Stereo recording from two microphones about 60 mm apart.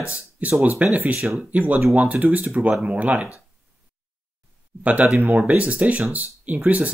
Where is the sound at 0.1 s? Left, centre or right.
Right.